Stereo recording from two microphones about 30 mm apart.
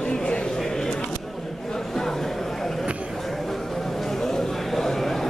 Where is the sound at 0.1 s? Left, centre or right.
Left.